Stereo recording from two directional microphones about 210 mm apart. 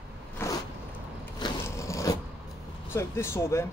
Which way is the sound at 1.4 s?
15° left (ahead or behind).